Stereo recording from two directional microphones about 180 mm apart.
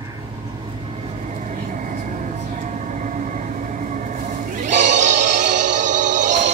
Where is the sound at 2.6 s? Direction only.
40° right (ahead or behind).